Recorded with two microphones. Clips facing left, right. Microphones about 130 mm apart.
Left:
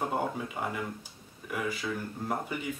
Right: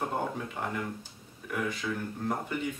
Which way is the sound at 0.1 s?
5° left (ahead or behind).